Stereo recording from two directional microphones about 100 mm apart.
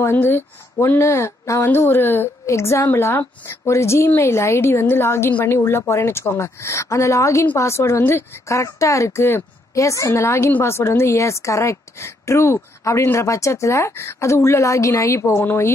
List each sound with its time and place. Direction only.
0.0 s speech: 20° left (ahead or behind)